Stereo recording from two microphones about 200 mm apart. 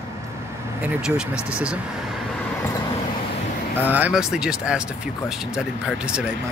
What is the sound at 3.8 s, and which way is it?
Speech, 10° right (ahead or behind).